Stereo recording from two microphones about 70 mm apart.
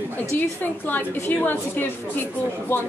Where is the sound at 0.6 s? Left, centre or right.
Left.